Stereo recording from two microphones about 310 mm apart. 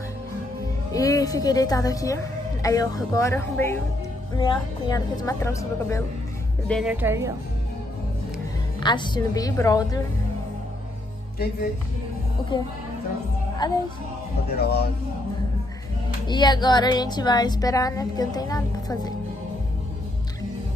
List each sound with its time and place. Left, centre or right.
0.9 s speech: centre
6.7 s a woman's voice: centre
8.8 s speech: centre
12.5 s speech: centre
16.3 s speech: centre